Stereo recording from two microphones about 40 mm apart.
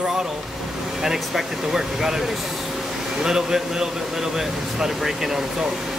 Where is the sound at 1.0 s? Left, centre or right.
Centre.